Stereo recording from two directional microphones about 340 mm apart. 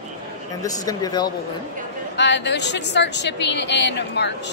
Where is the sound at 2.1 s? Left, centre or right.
Left.